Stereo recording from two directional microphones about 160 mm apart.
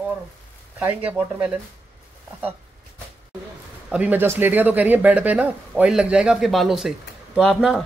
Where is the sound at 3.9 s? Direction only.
10° right (ahead or behind).